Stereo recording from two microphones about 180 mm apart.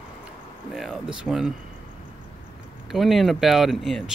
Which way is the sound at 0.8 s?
Centre (ahead or behind).